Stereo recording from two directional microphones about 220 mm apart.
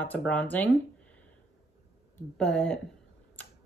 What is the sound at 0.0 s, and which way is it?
Speech, 5° left (ahead or behind).